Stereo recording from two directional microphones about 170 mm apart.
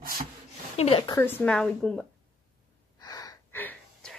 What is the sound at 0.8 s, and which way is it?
Speech, 35° left (ahead or behind).